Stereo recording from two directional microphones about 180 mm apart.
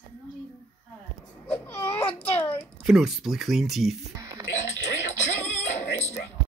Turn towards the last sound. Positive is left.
turn(degrees=40)  # may be behind; listen again after turning